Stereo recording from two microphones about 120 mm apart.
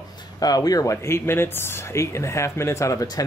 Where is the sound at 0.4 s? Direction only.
30° left (ahead or behind).